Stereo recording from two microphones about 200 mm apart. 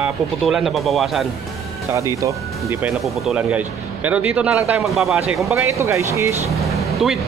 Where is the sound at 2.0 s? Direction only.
15° right (ahead or behind).